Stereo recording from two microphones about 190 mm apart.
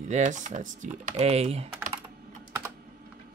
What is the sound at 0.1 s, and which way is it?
Speech, 40° right (ahead or behind).